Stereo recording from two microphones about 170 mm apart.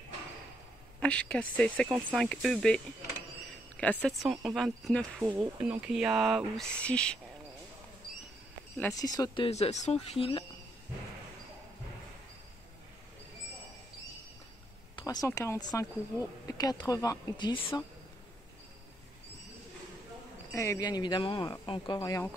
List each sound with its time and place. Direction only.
1.0 s speech: 5° left (ahead or behind)
8.9 s speech: 20° left (ahead or behind)
15.0 s speech: 20° left (ahead or behind)
20.5 s speech: 15° left (ahead or behind)